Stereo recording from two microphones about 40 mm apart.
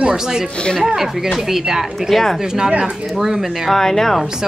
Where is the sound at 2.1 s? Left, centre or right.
Centre.